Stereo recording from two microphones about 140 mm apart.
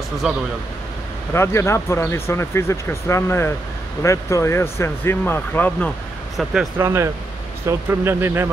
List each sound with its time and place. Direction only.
1.3 s speech: 20° left (ahead or behind)
6.3 s speech: centre (ahead or behind)
6.8 s speech: 15° right (ahead or behind)